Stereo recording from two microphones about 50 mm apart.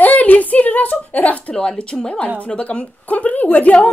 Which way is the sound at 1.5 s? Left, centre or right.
Left.